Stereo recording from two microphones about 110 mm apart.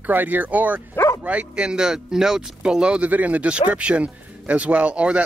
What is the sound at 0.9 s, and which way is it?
Bow-wow, 25° left (ahead or behind).